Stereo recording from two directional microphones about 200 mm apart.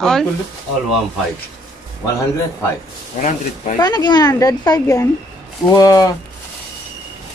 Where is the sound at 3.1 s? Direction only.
40° left (ahead or behind).